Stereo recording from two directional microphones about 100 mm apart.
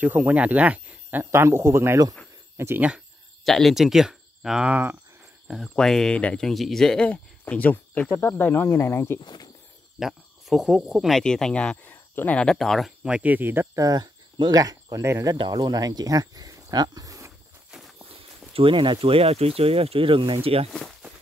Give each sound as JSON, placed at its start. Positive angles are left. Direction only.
{"t": 0.0, "sound": "speech", "side_deg": -15}
{"t": 1.3, "sound": "speech", "side_deg": -25}
{"t": 3.4, "sound": "speech", "side_deg": 0}
{"t": 5.5, "sound": "speech", "side_deg": 5}
{"t": 9.2, "sound": "speech", "side_deg": 45}
{"t": 9.9, "sound": "speech", "side_deg": -5}
{"t": 13.0, "sound": "speech", "side_deg": -15}
{"t": 13.7, "sound": "speech", "side_deg": -40}
{"t": 15.3, "sound": "speech", "side_deg": -45}
{"t": 17.6, "sound": "a sound", "side_deg": -5}
{"t": 18.5, "sound": "speech", "side_deg": -60}